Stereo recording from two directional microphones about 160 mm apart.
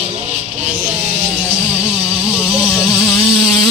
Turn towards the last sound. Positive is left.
turn(degrees=0)  # may be behind; listen again after turning